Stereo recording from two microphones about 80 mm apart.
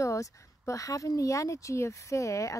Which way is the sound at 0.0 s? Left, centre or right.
Left.